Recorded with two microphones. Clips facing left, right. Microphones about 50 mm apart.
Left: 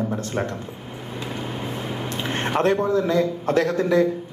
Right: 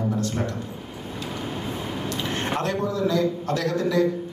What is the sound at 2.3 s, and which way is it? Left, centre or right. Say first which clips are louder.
A man's voice: left 7 dB; left.